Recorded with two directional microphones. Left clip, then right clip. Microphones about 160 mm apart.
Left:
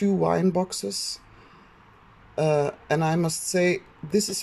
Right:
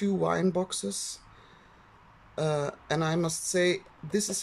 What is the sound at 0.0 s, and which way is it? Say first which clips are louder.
Speech: left 5 dB; 5° left (ahead or behind).